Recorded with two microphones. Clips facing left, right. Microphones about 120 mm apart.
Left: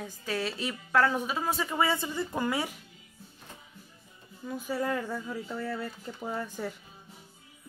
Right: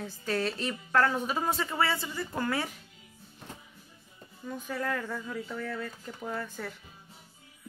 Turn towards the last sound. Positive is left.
turn(degrees=15)  # may be behind; listen again after turning